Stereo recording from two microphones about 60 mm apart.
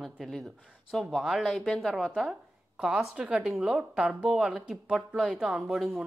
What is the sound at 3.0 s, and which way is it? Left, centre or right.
A woman's voice, centre.